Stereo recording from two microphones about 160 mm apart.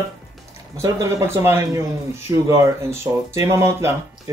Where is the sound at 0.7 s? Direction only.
20° right (ahead or behind).